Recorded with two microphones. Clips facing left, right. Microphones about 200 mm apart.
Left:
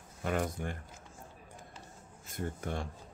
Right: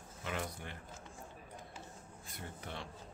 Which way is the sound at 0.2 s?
45° left (ahead or behind).